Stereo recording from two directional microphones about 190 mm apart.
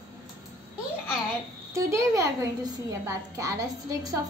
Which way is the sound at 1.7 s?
15° right (ahead or behind).